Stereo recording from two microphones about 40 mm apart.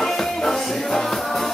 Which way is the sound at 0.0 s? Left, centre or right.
Centre.